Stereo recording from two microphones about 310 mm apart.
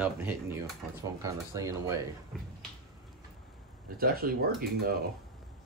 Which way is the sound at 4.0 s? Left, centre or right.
Right.